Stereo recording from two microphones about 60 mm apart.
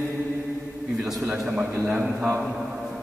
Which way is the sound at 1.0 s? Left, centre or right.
Centre.